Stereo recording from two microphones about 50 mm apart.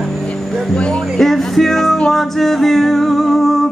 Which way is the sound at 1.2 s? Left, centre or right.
Centre.